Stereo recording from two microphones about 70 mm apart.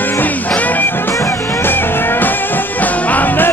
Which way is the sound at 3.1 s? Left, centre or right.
Left.